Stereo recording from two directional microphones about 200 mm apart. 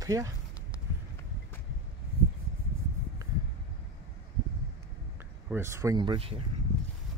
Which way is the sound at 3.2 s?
15° right (ahead or behind).